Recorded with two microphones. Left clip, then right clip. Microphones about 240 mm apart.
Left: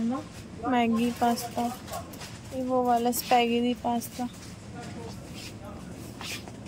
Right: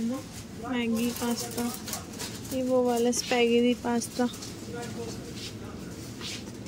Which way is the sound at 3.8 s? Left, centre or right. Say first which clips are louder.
Left 1 dB; centre.